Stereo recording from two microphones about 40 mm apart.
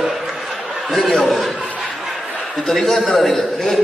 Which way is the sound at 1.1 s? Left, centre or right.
Centre.